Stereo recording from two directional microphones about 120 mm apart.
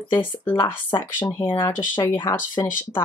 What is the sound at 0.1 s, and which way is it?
Speech, 15° left (ahead or behind).